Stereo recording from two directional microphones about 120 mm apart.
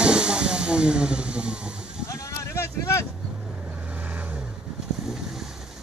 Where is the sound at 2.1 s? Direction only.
25° left (ahead or behind).